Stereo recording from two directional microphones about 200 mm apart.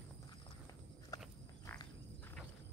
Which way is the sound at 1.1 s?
20° left (ahead or behind).